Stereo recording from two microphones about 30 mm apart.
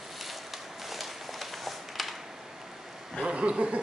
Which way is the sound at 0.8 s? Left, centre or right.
Centre.